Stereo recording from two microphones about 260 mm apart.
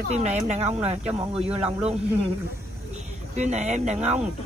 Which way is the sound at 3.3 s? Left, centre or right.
Right.